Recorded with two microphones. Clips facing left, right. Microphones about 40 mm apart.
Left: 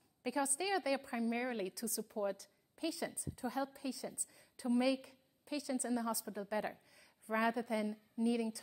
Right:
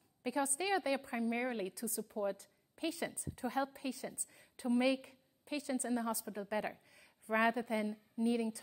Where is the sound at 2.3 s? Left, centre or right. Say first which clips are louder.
Even; right.